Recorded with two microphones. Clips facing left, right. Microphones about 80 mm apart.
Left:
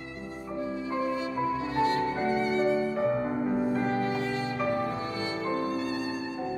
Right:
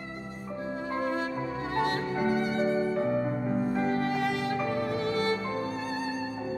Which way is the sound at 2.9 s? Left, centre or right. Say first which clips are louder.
Left 1 dB; centre.